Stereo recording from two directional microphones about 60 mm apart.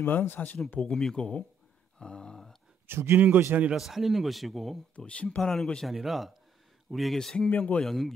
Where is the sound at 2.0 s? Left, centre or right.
Centre.